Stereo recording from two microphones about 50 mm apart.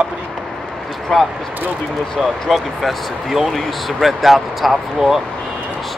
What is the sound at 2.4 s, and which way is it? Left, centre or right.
Speech, centre.